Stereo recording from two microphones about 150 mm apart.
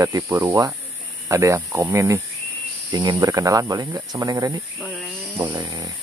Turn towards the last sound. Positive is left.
turn(degrees=-25)  # may be behind; listen again after turning